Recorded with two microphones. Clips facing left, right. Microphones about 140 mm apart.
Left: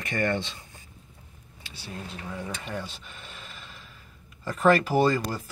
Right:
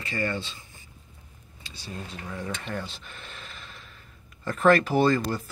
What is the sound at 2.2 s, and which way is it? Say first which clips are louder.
Speech: right 2 dB; 10° left (ahead or behind).